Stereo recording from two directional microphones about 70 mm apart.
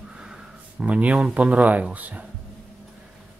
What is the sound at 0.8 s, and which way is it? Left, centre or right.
Speech, centre.